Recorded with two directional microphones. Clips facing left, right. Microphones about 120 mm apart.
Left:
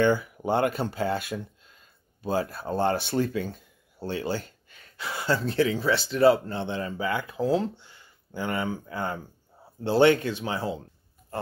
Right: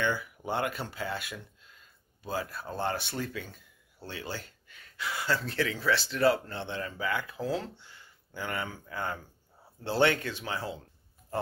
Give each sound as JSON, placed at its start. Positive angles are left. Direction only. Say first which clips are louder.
{"t": 0.0, "sound": "speech", "louder": "left 8 dB", "side_deg": 30}